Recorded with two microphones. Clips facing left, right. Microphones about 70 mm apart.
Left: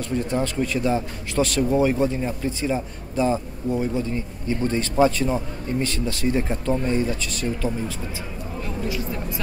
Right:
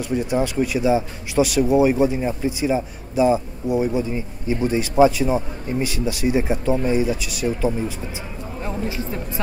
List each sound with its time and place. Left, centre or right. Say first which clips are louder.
0.0 s speech: right 3 dB; centre
8.6 s speech: right 2 dB; right